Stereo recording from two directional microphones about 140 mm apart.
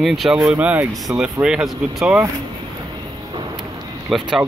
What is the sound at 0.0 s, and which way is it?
Speech, centre (ahead or behind).